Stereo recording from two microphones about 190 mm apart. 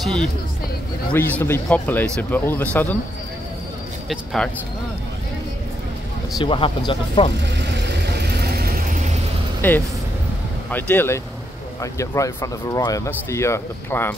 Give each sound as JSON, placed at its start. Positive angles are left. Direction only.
{"t": 0.0, "sound": "speech", "side_deg": 0}
{"t": 4.1, "sound": "speech", "side_deg": 0}
{"t": 6.4, "sound": "speech", "side_deg": 25}
{"t": 7.5, "sound": "vehicle", "side_deg": -65}
{"t": 9.6, "sound": "speech", "side_deg": 10}